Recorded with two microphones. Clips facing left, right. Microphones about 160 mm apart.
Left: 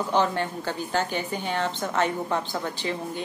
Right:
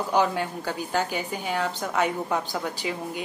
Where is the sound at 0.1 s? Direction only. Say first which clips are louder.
Right 1 dB; 10° right (ahead or behind).